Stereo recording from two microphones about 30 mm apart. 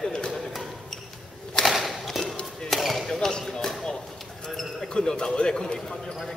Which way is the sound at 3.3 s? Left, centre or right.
Left.